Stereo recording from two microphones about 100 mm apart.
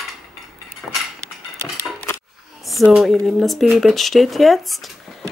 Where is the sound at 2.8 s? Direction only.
10° right (ahead or behind).